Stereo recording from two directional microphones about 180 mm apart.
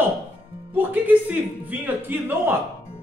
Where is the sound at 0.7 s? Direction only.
10° right (ahead or behind).